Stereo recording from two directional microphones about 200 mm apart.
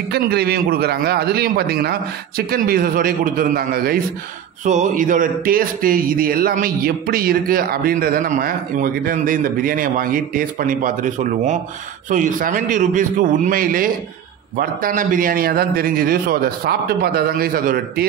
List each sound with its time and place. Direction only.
0.1 s a man's voice: 55° right (ahead or behind)